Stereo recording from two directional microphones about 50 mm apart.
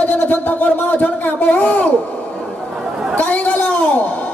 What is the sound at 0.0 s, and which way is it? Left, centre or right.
A woman's voice, left.